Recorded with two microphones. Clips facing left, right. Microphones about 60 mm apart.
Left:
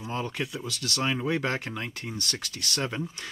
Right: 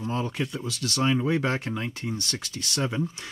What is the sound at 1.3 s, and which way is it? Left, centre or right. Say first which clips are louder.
Speech: right 3 dB; centre.